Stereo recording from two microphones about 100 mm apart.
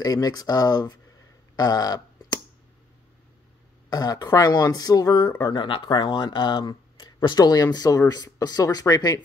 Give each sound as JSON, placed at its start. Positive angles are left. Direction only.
{"t": 0.0, "sound": "speech", "side_deg": 40}
{"t": 1.6, "sound": "a sound", "side_deg": 40}
{"t": 3.9, "sound": "speech", "side_deg": 40}
{"t": 5.5, "sound": "speech", "side_deg": 60}